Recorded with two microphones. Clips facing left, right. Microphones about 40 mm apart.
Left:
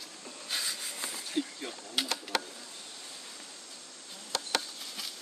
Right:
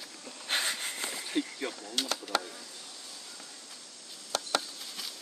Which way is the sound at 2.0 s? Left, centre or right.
Centre.